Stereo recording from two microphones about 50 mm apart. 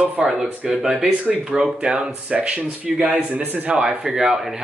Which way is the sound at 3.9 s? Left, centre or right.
Centre.